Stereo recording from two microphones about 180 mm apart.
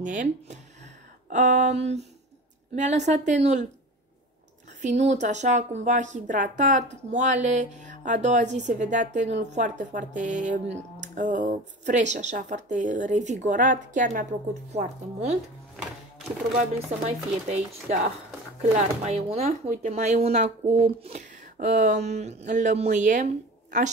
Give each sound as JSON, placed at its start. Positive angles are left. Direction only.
{"t": 0.0, "sound": "a woman's voice", "side_deg": -45}
{"t": 4.8, "sound": "a woman's voice", "side_deg": -40}
{"t": 16.5, "sound": "a woman's voice", "side_deg": -40}